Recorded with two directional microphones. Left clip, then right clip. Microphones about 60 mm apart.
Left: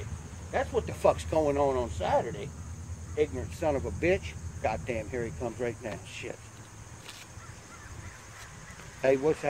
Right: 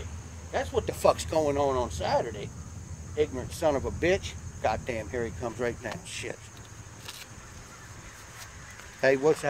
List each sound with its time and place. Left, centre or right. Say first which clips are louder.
0.5 s speech: right 1 dB; centre
9.0 s speech: right 2 dB; centre